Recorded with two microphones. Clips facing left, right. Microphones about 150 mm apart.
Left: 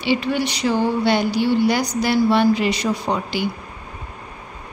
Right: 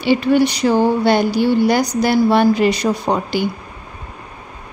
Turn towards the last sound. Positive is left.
turn(degrees=-45)  # may be behind; listen again after turning